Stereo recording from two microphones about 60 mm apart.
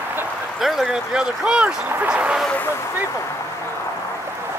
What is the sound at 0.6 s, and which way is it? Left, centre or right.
Speech, centre.